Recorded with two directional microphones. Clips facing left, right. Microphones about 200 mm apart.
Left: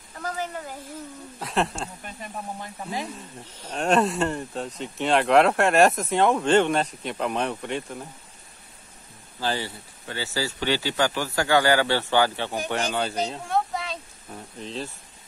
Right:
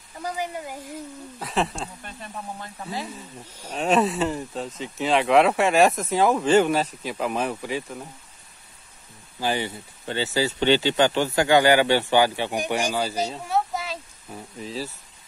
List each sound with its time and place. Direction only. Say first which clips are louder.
0.2 s speech: right 1 dB; 15° right (ahead or behind)
1.4 s speech: even; centre (ahead or behind)
2.0 s speech: left 1 dB; 15° left (ahead or behind)
3.4 s speech: even; 10° right (ahead or behind)
9.4 s speech: right 2 dB; 15° right (ahead or behind)